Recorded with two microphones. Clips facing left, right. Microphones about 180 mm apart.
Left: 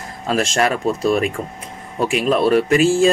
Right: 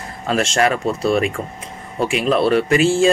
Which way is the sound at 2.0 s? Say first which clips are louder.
Even; 40° left (ahead or behind).